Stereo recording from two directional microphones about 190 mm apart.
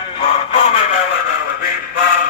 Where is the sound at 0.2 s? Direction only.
35° left (ahead or behind).